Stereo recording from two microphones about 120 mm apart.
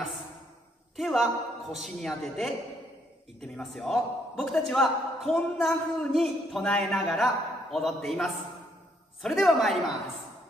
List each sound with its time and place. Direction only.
0.9 s a man's voice: centre (ahead or behind)